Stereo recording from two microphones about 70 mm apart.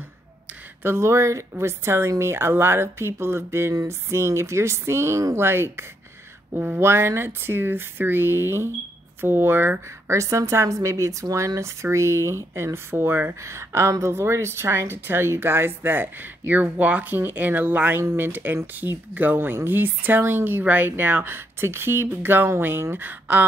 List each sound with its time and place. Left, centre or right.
0.8 s a woman's voice: right
6.5 s speech: right
6.8 s a woman's voice: right